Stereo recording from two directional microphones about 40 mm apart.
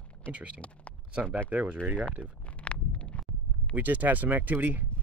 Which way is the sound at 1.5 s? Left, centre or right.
Right.